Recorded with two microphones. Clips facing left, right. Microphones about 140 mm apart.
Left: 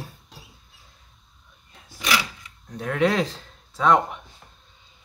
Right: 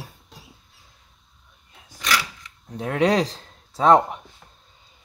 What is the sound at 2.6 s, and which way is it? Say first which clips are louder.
Speech: right 2 dB; 25° right (ahead or behind).